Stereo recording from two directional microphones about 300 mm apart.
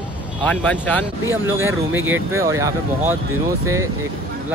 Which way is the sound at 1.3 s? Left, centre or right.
Centre.